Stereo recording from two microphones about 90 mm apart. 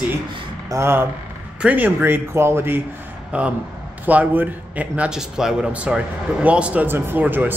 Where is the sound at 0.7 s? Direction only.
25° right (ahead or behind).